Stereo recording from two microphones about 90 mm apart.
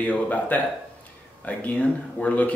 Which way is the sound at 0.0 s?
15° left (ahead or behind).